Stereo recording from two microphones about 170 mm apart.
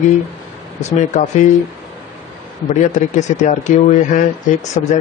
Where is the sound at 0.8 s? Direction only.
45° left (ahead or behind).